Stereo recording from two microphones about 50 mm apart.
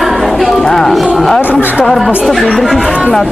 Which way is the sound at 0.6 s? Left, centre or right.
Centre.